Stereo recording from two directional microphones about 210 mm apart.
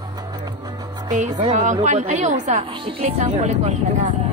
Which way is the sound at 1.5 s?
35° right (ahead or behind).